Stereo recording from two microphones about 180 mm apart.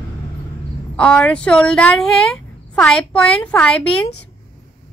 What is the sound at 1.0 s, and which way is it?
Speech, 5° left (ahead or behind).